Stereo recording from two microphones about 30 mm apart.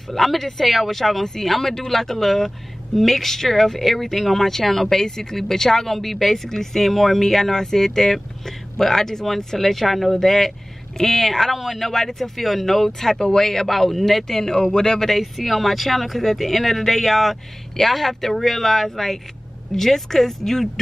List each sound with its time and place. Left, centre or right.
0.1 s speech: centre
11.9 s speech: centre
13.2 s speech: centre
13.5 s speech: centre; by 15.0 s left
15.0 s speech: centre